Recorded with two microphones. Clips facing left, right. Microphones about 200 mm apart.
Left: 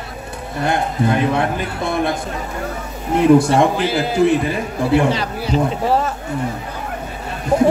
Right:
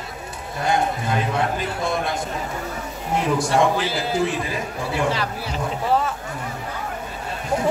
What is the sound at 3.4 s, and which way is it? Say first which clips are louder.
Speech: left 4 dB; 60° left (ahead or behind).